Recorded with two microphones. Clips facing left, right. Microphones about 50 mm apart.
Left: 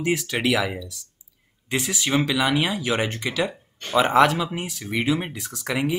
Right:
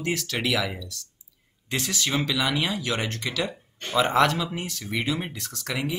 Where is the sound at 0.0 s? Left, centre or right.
Centre.